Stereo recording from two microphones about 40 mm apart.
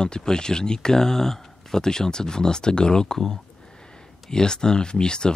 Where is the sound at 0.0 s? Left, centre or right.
Centre.